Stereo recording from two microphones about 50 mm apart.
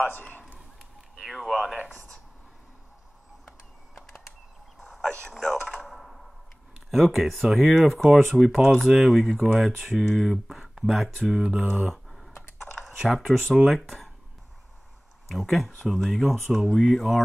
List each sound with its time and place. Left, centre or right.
0.2 s a man's voice: left
1.2 s a sound: centre
4.7 s a sound: centre
6.9 s speech: centre
11.7 s speech: centre
12.1 s computer keyboard: centre
12.8 s speech: centre
13.8 s a sound: centre
15.2 s speech: centre